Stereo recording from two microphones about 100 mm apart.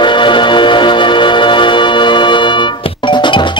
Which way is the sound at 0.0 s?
55° left (ahead or behind).